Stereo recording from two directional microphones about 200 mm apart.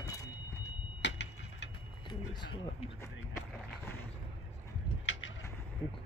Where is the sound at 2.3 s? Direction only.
20° left (ahead or behind).